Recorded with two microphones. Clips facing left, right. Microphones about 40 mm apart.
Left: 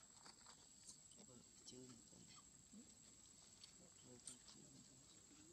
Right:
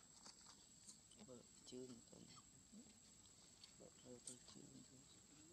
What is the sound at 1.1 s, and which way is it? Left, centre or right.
Cricket, centre.